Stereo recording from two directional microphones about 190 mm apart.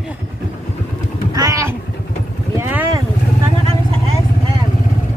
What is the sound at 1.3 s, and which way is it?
Vehicle, 20° right (ahead or behind).